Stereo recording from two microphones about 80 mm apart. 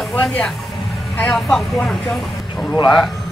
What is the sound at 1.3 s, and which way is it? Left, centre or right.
Speech, centre.